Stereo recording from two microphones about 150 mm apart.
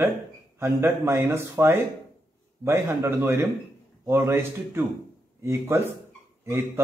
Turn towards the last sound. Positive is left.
turn(degrees=-15)  # may be behind; listen again after turning